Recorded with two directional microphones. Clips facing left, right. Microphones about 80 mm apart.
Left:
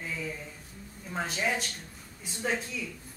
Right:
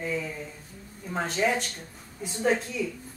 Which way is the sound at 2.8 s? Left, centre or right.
Centre.